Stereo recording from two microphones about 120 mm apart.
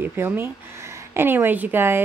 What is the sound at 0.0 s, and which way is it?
A woman's voice, 20° right (ahead or behind).